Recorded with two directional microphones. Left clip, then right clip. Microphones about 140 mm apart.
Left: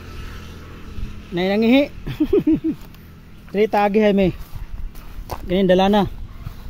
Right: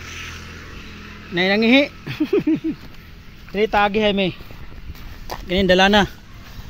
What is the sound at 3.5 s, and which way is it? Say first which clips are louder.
Speech: left 1 dB; 45° left (ahead or behind).